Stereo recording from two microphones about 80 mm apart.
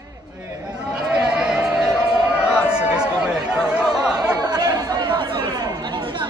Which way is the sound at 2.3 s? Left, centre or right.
Centre.